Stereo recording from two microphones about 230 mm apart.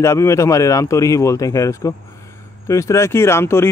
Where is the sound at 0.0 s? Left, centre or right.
Centre.